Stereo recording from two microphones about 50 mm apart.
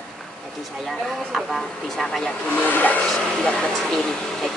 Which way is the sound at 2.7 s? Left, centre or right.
Left.